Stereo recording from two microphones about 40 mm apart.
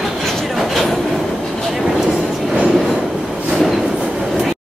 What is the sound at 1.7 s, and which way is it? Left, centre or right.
Vehicle, centre.